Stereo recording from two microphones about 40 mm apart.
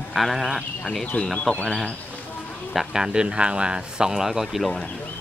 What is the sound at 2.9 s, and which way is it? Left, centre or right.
Speech, right.